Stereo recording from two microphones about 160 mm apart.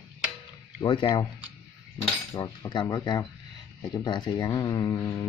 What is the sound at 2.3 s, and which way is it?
Speech, 25° left (ahead or behind).